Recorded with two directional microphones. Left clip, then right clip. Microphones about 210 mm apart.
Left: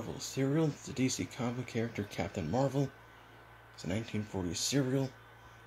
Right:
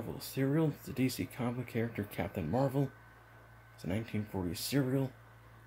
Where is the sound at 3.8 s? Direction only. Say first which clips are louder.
Left 1 dB; centre (ahead or behind).